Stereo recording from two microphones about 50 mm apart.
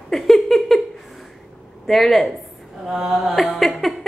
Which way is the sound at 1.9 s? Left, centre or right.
Centre.